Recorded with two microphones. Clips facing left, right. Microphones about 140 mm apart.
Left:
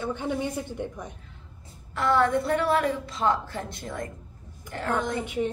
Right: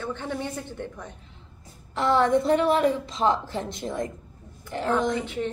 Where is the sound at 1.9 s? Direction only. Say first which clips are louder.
Right 2 dB; 20° right (ahead or behind).